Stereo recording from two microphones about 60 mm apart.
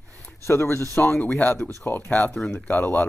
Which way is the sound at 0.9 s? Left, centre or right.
Left.